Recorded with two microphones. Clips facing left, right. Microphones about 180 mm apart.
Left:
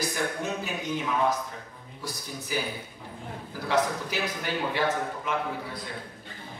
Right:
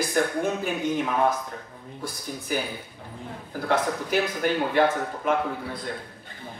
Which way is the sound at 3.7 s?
55° right (ahead or behind).